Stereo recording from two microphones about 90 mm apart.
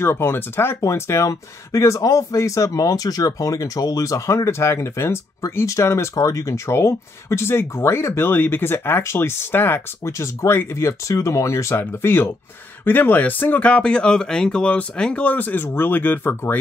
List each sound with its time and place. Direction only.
0.0 s speech: 25° left (ahead or behind)